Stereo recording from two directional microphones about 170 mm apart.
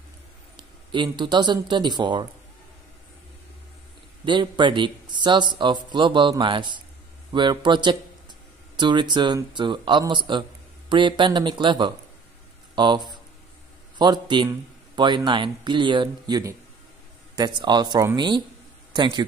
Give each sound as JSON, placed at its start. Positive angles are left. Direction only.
{"t": 0.6, "sound": "speech", "side_deg": -25}
{"t": 4.2, "sound": "speech", "side_deg": -25}